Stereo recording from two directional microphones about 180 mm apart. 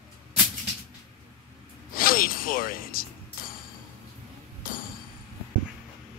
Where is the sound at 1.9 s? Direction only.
55° left (ahead or behind).